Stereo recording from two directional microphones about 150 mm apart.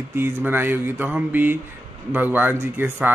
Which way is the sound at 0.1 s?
15° right (ahead or behind).